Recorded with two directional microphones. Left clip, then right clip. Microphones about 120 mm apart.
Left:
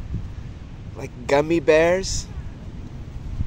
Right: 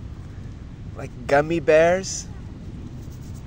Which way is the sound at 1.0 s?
35° left (ahead or behind).